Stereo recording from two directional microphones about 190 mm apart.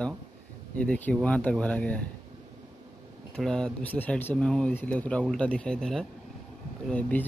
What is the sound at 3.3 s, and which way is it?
Speech, 5° left (ahead or behind).